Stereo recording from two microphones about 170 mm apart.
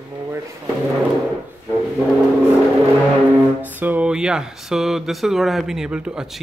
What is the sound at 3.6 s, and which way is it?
Speech, 10° right (ahead or behind).